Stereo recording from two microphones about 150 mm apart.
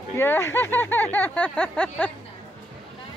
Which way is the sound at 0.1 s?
15° left (ahead or behind).